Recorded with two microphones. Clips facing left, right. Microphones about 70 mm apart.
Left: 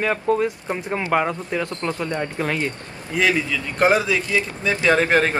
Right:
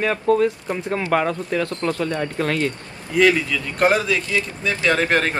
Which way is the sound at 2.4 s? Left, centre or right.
Centre.